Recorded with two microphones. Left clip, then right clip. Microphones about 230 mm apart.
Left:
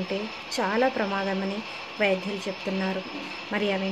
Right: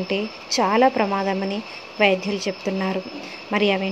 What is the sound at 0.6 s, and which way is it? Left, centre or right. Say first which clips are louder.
Speech: right 7 dB; right.